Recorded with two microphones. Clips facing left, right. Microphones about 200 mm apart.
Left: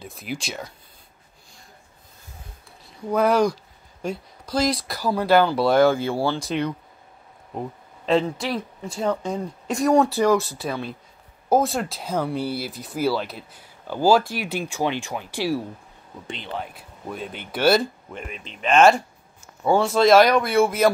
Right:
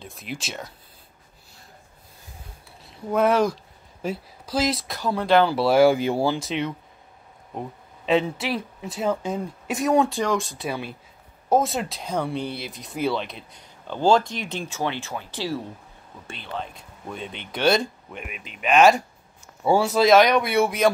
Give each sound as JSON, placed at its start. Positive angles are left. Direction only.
{"t": 0.0, "sound": "speech", "side_deg": 0}
{"t": 2.9, "sound": "speech", "side_deg": 0}
{"t": 5.5, "sound": "speech", "side_deg": -5}
{"t": 6.4, "sound": "speech", "side_deg": 0}
{"t": 10.7, "sound": "speech", "side_deg": -5}
{"t": 16.6, "sound": "speech", "side_deg": 5}
{"t": 18.2, "sound": "speech", "side_deg": -10}